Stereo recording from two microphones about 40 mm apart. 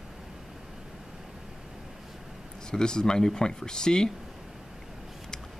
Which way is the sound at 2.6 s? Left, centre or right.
Centre.